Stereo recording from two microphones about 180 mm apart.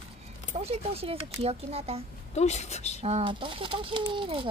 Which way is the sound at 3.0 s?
35° right (ahead or behind).